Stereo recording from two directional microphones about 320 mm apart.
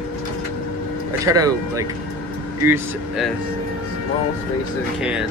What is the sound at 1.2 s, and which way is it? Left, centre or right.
Speech, centre.